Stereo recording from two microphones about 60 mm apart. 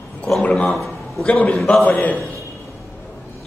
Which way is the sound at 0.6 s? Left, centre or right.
Centre.